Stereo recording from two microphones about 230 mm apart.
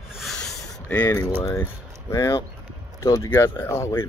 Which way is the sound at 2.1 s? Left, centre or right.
Centre.